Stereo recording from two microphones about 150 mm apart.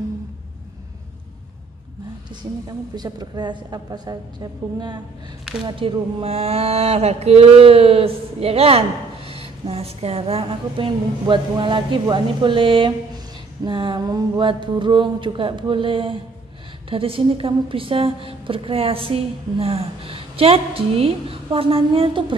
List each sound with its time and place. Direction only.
3.0 s a woman's voice: 30° right (ahead or behind)